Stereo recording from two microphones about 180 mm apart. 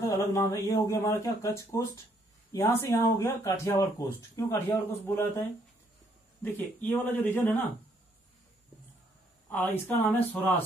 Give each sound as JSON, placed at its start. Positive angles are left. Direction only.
{"t": 0.0, "sound": "speech", "side_deg": 15}
{"t": 6.4, "sound": "speech", "side_deg": 10}
{"t": 9.5, "sound": "speech", "side_deg": 10}